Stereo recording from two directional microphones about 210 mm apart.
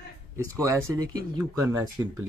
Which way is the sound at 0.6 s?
15° right (ahead or behind).